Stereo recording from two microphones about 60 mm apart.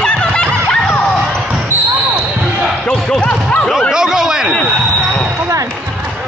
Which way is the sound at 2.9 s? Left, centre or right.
Centre.